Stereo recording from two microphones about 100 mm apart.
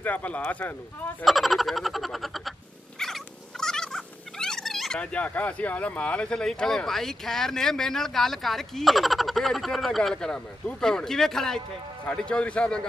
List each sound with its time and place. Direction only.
0.0 s speech: 15° left (ahead or behind)
1.2 s frog: centre (ahead or behind)
3.0 s cat: 5° left (ahead or behind)
12.1 s speech: 10° left (ahead or behind)